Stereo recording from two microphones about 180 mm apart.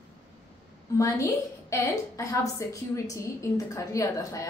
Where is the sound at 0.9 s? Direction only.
20° left (ahead or behind).